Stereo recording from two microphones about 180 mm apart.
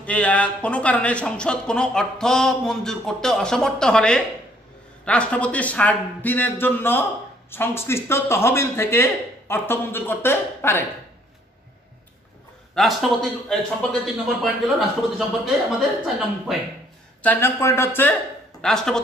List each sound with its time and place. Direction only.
0.0 s speech: 5° left (ahead or behind)
12.7 s speech: centre (ahead or behind)
17.2 s speech: 10° left (ahead or behind)